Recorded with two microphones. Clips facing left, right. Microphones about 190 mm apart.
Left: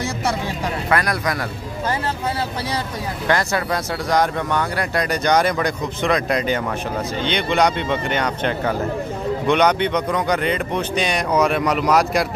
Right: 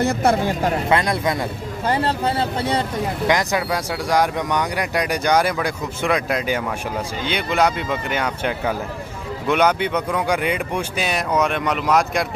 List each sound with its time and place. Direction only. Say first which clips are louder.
0.0 s speech: right 5 dB; 55° right (ahead or behind)
0.8 s speech: left 1 dB; 25° right (ahead or behind)
3.3 s speech: left 1 dB; 15° right (ahead or behind)